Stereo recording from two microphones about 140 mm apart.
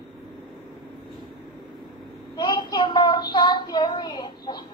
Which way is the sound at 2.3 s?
30° left (ahead or behind).